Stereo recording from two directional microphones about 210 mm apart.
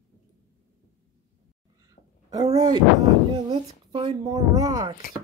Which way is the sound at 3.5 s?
25° right (ahead or behind).